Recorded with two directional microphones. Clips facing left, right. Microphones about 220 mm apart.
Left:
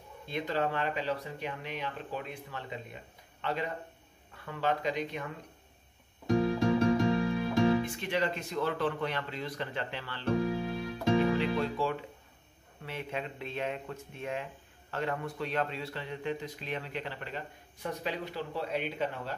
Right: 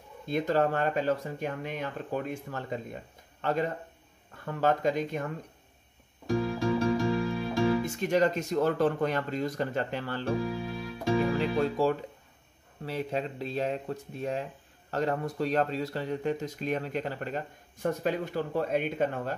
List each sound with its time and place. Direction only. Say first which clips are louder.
0.3 s speech: right 6 dB; 45° right (ahead or behind)
6.2 s music: left 1 dB; 20° left (ahead or behind)
7.8 s speech: right 6 dB; 45° right (ahead or behind)
10.4 s keyboard: left 1 dB; 25° left (ahead or behind)
11.3 s speech: right 3 dB; 45° right (ahead or behind)